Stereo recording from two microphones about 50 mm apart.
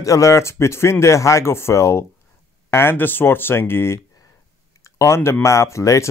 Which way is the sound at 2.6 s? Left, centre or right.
Left.